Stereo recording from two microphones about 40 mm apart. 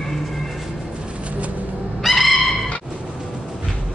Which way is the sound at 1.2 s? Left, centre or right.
Right.